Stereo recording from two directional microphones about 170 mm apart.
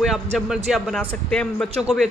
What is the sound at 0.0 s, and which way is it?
A man's voice, centre (ahead or behind).